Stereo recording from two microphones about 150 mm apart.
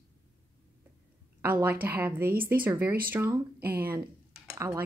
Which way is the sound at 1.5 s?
10° right (ahead or behind).